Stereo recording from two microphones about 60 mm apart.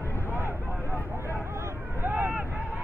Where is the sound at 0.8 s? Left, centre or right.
Left.